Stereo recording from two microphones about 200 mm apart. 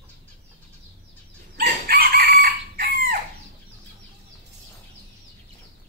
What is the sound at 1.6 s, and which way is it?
Chicken, 50° right (ahead or behind).